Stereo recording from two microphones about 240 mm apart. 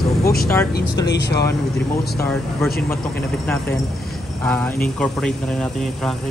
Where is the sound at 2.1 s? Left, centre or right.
Centre.